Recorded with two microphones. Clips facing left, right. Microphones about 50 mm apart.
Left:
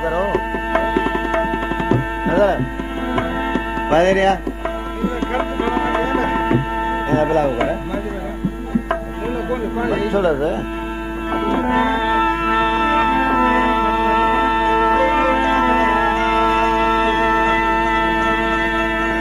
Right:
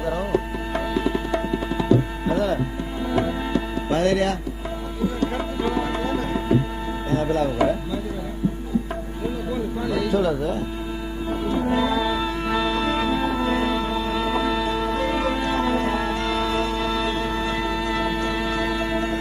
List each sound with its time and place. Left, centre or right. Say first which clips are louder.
0.0 s tabla: left 5 dB; left
3.2 s music: left 2 dB; left
7.1 s a sound: left 5 dB; left
9.5 s music: left 6 dB; left